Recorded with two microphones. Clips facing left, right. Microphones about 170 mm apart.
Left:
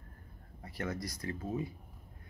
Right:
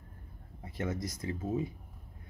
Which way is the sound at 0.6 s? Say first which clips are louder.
Right 3 dB; 20° right (ahead or behind).